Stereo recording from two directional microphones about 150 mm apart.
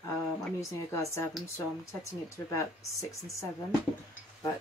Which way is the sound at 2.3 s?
20° left (ahead or behind).